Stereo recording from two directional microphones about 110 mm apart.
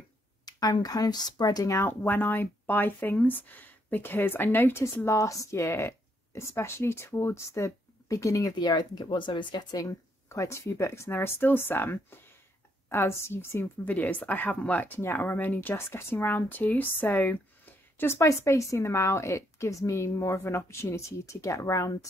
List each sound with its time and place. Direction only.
0.5 s speech: 35° left (ahead or behind)